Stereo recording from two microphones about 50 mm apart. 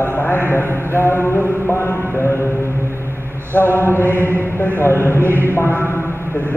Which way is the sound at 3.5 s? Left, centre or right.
Left.